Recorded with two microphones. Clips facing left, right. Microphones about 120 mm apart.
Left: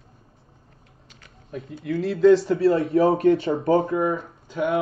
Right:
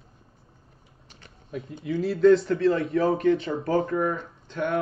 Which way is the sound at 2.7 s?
30° left (ahead or behind).